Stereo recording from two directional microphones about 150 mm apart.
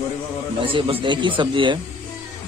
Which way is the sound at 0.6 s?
35° right (ahead or behind).